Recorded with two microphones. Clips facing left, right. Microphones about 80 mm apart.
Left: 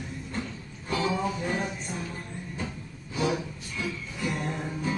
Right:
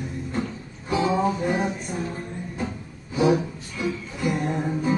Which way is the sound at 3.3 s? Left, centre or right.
Centre.